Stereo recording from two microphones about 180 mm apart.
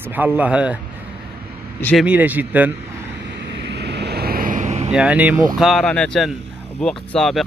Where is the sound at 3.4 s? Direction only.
70° right (ahead or behind); by 4.9 s 40° right (ahead or behind).